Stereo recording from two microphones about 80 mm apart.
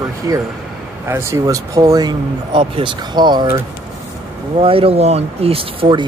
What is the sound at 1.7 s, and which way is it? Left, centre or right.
Speech, right.